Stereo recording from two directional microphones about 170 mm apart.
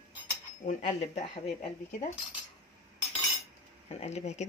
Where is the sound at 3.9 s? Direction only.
40° left (ahead or behind).